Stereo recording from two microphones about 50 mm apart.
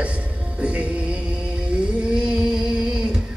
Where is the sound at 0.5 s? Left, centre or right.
Right.